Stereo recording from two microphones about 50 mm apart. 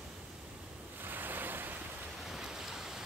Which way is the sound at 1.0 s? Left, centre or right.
Right.